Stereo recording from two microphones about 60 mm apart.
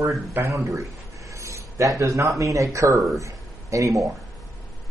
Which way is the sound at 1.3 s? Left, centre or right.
Right.